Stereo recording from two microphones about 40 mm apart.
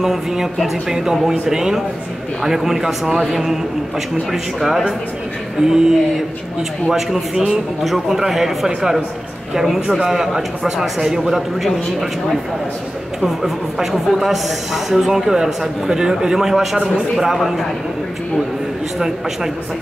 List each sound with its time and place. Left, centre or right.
0.0 s a man's voice: centre
3.2 s a woman's voice: centre
4.3 s a man's voice: centre
9.8 s a man's voice: right
10.0 s a man's voice: centre
13.4 s a man's voice: centre
18.9 s a man's voice: centre